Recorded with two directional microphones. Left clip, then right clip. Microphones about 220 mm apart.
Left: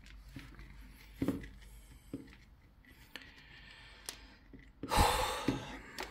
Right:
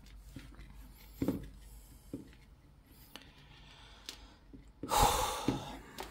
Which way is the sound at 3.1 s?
10° right (ahead or behind).